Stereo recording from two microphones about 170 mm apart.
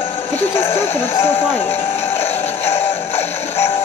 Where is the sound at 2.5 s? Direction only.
40° left (ahead or behind).